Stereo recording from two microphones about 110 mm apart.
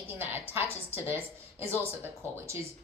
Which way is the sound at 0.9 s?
20° right (ahead or behind).